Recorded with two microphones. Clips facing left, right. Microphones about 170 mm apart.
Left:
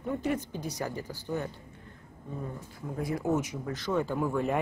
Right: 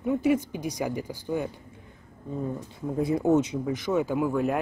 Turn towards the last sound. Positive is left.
turn(degrees=0)  # may be behind; listen again after turning